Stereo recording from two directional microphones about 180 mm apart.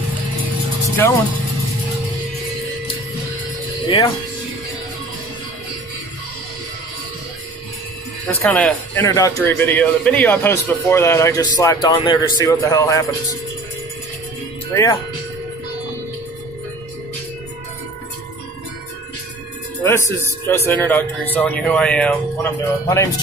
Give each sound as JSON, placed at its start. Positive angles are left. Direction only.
{"t": 0.8, "sound": "music", "side_deg": 15}
{"t": 3.8, "sound": "speech", "side_deg": 25}
{"t": 8.3, "sound": "a man's voice", "side_deg": 10}
{"t": 14.7, "sound": "speech", "side_deg": 15}
{"t": 19.8, "sound": "a man's voice", "side_deg": 15}